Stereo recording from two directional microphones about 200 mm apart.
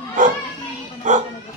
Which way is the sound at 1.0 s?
40° right (ahead or behind).